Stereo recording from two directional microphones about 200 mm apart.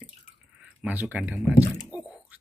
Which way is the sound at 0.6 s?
10° right (ahead or behind).